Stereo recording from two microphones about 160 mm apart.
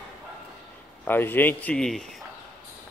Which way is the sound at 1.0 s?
10° left (ahead or behind).